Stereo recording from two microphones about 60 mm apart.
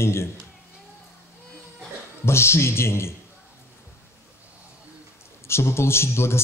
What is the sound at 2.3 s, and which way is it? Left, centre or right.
Speech, left.